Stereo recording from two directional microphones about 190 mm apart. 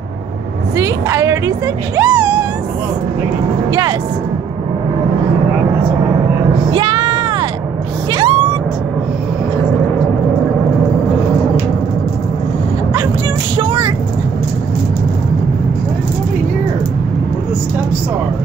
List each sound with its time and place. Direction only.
0.7 s a woman's voice: 15° right (ahead or behind)
6.7 s a sound: 25° right (ahead or behind)
8.1 s vehicle: 30° right (ahead or behind)